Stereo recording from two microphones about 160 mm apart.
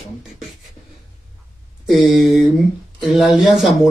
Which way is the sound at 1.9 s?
Centre (ahead or behind).